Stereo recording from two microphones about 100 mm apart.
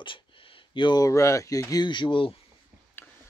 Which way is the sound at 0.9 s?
30° left (ahead or behind).